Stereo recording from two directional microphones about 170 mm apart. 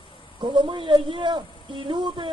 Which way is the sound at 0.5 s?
30° right (ahead or behind).